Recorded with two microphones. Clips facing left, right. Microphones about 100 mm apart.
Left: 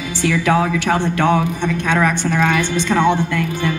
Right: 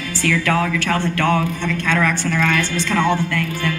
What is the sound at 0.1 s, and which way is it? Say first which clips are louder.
A man's voice: left 3 dB; 15° left (ahead or behind).